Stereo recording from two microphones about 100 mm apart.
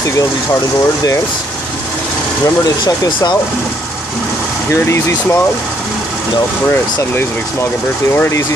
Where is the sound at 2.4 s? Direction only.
40° left (ahead or behind).